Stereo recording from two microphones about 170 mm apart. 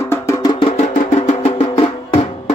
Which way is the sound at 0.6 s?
40° left (ahead or behind).